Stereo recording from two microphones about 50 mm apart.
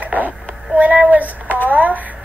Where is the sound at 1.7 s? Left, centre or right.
Right.